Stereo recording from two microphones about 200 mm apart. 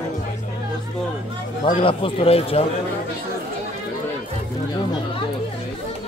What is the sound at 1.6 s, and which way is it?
A man's voice, 25° left (ahead or behind).